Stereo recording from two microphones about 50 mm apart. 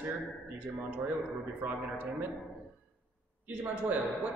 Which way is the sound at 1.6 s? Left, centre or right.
Right.